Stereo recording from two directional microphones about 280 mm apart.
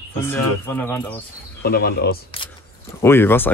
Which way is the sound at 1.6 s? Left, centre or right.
Left.